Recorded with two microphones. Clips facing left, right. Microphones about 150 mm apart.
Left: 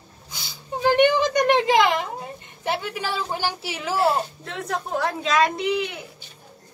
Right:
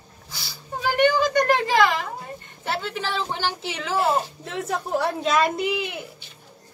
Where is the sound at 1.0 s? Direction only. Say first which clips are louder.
Right 1 dB; 20° left (ahead or behind).